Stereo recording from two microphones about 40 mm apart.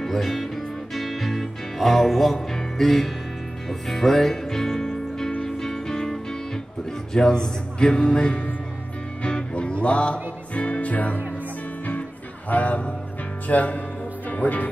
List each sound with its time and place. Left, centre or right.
0.0 s music: centre
2.3 s speech: centre
3.6 s music: centre
5.4 s music: centre
7.2 s a man's voice: centre
9.2 s music: left
12.4 s speech: left